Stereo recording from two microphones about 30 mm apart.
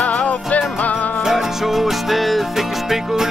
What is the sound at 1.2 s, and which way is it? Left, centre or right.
Music, centre.